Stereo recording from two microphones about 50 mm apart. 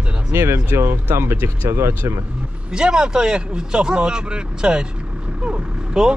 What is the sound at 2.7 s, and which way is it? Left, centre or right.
Speech, centre.